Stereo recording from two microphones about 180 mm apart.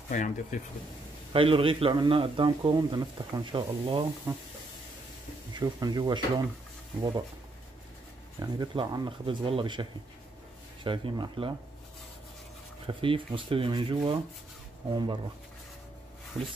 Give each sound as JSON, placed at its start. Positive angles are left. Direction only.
{"t": 0.1, "sound": "speech", "side_deg": 45}
{"t": 1.3, "sound": "a man's voice", "side_deg": -30}
{"t": 5.5, "sound": "a man's voice", "side_deg": -20}
{"t": 8.4, "sound": "a man's voice", "side_deg": -20}
{"t": 12.8, "sound": "a man's voice", "side_deg": -30}
{"t": 16.3, "sound": "speech", "side_deg": -5}